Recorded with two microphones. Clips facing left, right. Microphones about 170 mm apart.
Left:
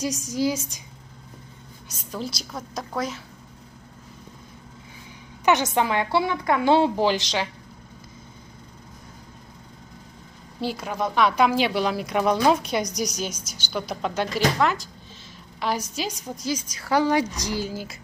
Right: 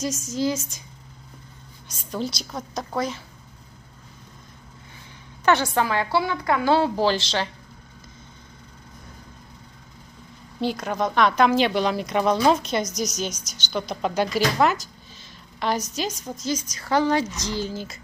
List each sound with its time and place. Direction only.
0.0 s speech: 15° left (ahead or behind)
1.9 s a woman's voice: 5° left (ahead or behind)
5.4 s a woman's voice: 20° left (ahead or behind)
10.6 s speech: 5° left (ahead or behind)
14.4 s speech: 5° right (ahead or behind)
15.6 s speech: 10° left (ahead or behind)